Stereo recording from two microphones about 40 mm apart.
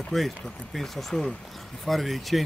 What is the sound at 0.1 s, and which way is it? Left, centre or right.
Speech, centre.